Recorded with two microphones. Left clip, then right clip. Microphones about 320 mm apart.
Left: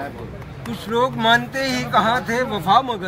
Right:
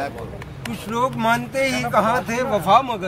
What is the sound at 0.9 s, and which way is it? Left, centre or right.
Speech, centre.